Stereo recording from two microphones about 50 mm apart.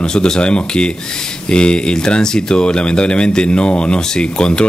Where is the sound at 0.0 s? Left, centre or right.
Centre.